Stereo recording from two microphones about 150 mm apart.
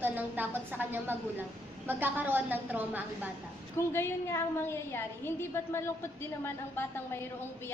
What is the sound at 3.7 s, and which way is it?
A woman's voice, 15° left (ahead or behind).